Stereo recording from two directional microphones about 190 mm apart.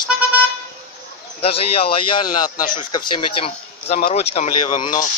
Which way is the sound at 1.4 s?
30° left (ahead or behind).